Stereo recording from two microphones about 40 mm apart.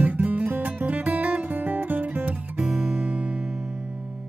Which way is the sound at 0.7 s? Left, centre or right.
Right.